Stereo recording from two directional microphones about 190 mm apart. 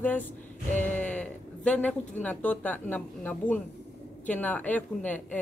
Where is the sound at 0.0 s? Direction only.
10° left (ahead or behind).